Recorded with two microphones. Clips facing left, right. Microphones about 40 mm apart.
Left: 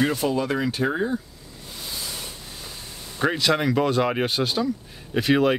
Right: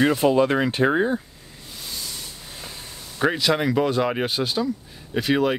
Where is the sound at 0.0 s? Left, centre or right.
Centre.